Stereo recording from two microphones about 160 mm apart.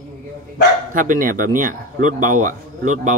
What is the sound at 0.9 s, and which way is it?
Speech, 55° right (ahead or behind).